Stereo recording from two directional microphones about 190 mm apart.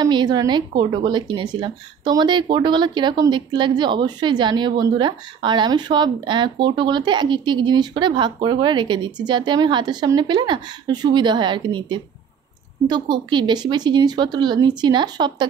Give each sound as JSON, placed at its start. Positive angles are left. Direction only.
{"t": 0.0, "sound": "a woman's voice", "side_deg": -20}